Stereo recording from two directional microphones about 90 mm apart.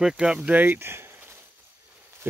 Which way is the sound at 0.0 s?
5° right (ahead or behind).